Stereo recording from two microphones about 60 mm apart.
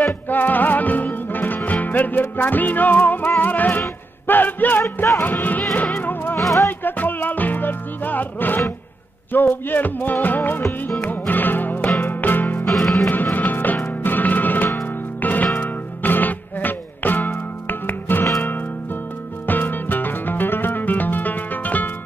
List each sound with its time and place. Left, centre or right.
0.3 s music: left
4.3 s speech: left
4.8 s music: left
5.2 s speech: left
5.9 s music: left
9.3 s speech: left
11.0 s music: left
12.6 s music: centre
13.1 s music: left
19.4 s music: left